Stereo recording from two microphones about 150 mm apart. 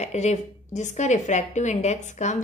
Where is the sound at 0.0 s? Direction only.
50° left (ahead or behind).